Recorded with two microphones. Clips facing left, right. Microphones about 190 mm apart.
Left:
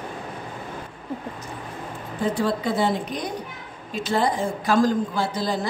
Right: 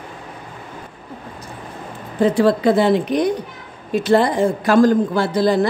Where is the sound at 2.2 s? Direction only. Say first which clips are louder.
Right 9 dB; 85° right; by 5.6 s 70° right (ahead or behind).